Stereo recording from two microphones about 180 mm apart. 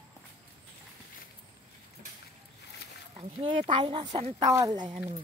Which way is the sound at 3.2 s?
30° right (ahead or behind).